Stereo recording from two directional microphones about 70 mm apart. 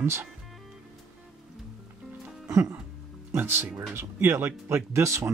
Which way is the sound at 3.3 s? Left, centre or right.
Right.